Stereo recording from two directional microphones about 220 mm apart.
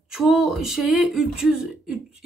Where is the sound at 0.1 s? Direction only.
Centre (ahead or behind).